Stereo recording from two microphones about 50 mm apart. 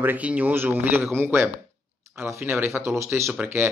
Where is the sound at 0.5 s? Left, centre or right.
Right.